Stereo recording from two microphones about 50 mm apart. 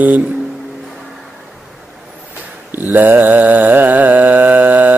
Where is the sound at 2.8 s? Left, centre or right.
Right.